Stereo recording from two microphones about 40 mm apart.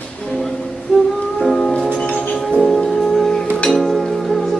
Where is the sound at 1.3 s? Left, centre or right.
Centre.